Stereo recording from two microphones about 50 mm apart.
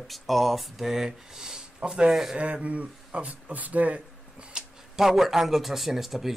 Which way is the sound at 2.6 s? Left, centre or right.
Right.